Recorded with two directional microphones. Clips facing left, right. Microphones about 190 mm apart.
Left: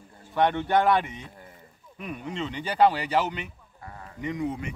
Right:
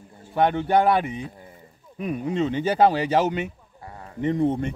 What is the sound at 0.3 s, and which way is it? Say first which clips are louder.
Speech: right 3 dB; 35° right (ahead or behind).